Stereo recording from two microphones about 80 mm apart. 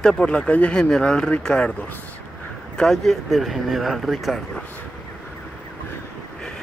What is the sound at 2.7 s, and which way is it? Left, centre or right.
Speech, centre.